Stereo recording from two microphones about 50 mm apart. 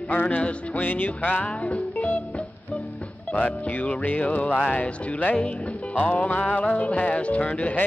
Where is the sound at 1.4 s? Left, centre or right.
Left.